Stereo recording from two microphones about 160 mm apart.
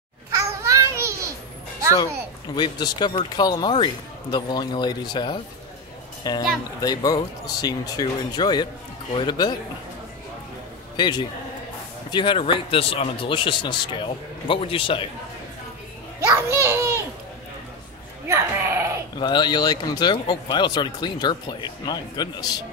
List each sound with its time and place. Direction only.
0.3 s a sound: 20° right (ahead or behind)
2.5 s speech: 25° left (ahead or behind)
11.0 s speech: 25° left (ahead or behind)
16.2 s children playing: 15° right (ahead or behind)
18.3 s sheep: 15° right (ahead or behind)
19.1 s speech: 25° left (ahead or behind)